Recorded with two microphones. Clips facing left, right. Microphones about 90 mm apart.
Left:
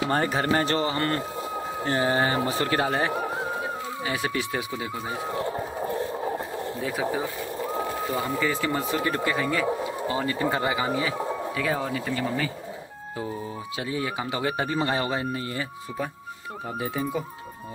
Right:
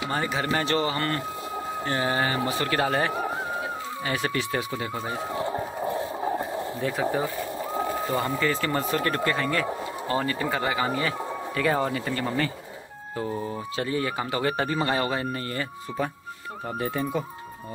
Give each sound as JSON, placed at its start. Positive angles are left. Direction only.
{"t": 0.1, "sound": "speech", "side_deg": 45}
{"t": 0.5, "sound": "speech", "side_deg": 35}
{"t": 4.0, "sound": "speech", "side_deg": 10}
{"t": 6.8, "sound": "speech", "side_deg": 5}
{"t": 10.2, "sound": "speech", "side_deg": 20}
{"t": 10.9, "sound": "speech", "side_deg": 5}
{"t": 13.7, "sound": "speech", "side_deg": 10}
{"t": 16.8, "sound": "speech", "side_deg": 5}